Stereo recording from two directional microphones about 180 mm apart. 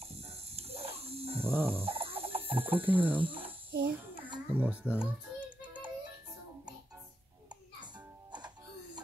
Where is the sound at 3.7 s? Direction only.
55° right (ahead or behind).